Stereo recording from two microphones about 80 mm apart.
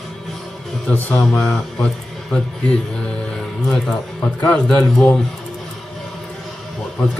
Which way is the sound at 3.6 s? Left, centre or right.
Centre.